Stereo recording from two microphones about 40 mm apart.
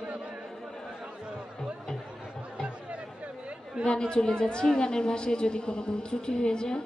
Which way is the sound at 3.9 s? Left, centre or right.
Left.